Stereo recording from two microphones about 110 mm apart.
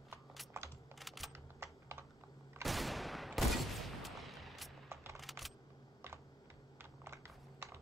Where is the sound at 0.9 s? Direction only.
Centre (ahead or behind).